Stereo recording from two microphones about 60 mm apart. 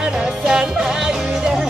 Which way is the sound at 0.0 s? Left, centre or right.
Centre.